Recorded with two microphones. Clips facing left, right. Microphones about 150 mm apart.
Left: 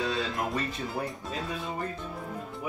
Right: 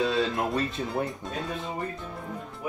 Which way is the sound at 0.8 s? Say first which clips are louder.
Right 3 dB; centre (ahead or behind).